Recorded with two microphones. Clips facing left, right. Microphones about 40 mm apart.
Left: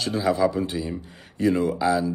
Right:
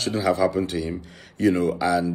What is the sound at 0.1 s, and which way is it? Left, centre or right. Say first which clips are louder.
Speech: right 1 dB; right.